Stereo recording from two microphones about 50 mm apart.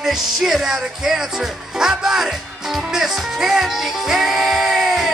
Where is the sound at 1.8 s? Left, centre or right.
Centre.